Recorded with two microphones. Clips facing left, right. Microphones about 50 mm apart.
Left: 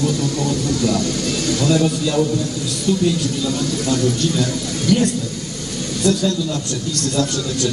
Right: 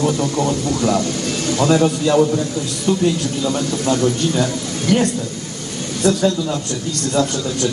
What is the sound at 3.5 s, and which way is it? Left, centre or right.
A man's voice, right.